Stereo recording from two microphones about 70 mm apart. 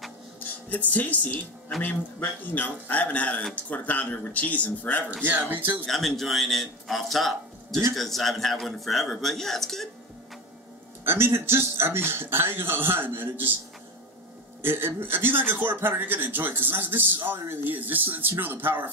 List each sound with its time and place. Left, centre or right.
0.7 s a man's voice: left
5.2 s speech: right
5.9 s a man's voice: centre
11.1 s a man's voice: right
14.6 s speech: right